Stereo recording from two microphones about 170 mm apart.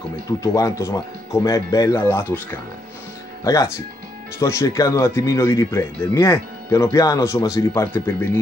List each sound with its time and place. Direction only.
0.4 s speech: 20° left (ahead or behind)